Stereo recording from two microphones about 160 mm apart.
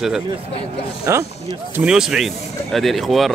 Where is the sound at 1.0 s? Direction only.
20° right (ahead or behind).